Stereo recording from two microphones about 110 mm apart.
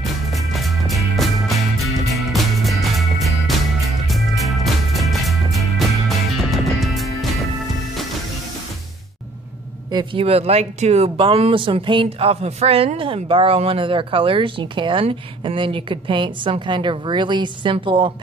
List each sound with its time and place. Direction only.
0.0 s music: centre (ahead or behind)
10.1 s speech: 65° right (ahead or behind); by 18.1 s 50° right (ahead or behind)